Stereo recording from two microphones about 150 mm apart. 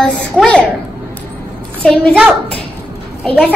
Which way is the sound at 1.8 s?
5° left (ahead or behind).